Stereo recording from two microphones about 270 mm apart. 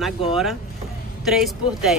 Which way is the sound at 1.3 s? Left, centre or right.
Centre.